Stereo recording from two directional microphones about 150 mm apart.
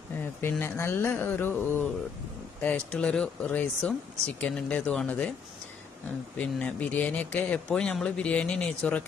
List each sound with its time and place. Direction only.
0.4 s speech: 15° left (ahead or behind)
6.3 s speech: 10° left (ahead or behind)